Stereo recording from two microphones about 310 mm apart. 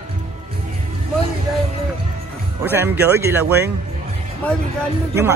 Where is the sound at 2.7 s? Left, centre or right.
Centre.